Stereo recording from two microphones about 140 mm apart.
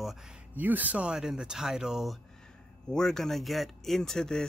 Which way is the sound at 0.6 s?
10° right (ahead or behind).